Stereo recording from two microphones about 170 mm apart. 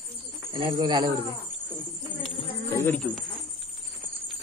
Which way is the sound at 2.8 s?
10° left (ahead or behind).